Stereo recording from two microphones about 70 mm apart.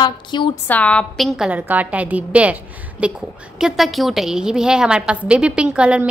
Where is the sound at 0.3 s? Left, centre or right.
Left.